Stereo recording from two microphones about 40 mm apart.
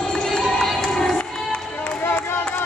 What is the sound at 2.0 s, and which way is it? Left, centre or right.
Clapping, left.